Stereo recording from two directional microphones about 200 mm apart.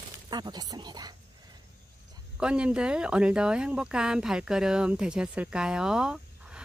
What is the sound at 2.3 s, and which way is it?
Speech, 5° right (ahead or behind).